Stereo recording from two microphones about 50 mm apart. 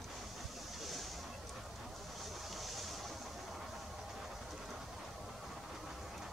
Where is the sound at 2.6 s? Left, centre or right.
Centre.